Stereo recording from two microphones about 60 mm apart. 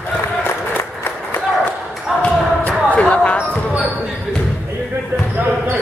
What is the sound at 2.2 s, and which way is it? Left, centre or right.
Basketball bounce, left.